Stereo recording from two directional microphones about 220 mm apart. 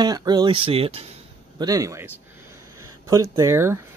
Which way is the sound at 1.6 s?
15° right (ahead or behind).